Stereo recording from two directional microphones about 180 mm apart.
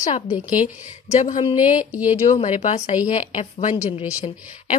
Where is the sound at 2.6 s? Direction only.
30° left (ahead or behind).